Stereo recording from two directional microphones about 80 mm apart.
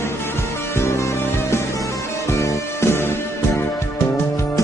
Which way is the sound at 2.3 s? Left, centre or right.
Left.